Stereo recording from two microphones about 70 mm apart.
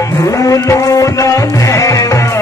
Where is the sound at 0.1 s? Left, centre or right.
Left.